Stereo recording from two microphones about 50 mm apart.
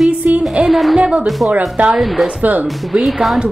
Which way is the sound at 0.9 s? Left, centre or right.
Right.